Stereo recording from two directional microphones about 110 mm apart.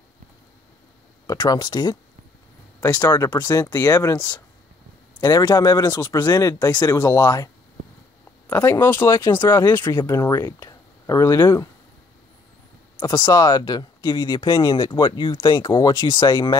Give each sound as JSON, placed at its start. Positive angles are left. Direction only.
{"t": 1.2, "sound": "speech", "side_deg": 35}
{"t": 2.8, "sound": "speech", "side_deg": 25}
{"t": 5.2, "sound": "speech", "side_deg": 35}
{"t": 8.5, "sound": "speech", "side_deg": 15}
{"t": 9.8, "sound": "speech", "side_deg": 35}
{"t": 13.0, "sound": "speech", "side_deg": 40}